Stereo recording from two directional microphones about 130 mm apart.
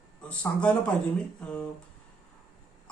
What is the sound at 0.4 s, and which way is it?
Speech, 10° left (ahead or behind).